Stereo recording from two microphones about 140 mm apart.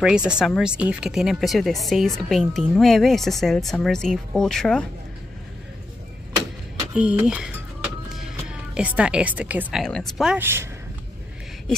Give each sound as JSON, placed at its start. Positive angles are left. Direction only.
{"t": 0.0, "sound": "a woman's voice", "side_deg": -5}
{"t": 6.9, "sound": "speech", "side_deg": -10}
{"t": 9.8, "sound": "a woman's voice", "side_deg": 5}
{"t": 10.3, "sound": "speech", "side_deg": -15}